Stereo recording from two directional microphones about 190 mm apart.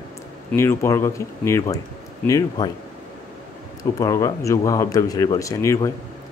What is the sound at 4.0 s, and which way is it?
Speech, 15° left (ahead or behind).